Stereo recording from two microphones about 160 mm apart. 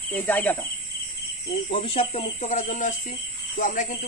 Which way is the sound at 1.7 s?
35° left (ahead or behind).